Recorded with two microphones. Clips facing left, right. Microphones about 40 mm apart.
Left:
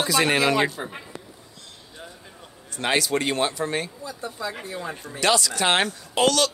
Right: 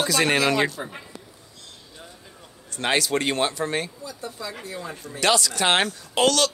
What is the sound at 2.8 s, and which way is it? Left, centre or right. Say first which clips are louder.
Speech: even; centre.